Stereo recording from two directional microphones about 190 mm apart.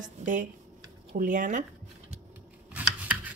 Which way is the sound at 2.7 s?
5° right (ahead or behind).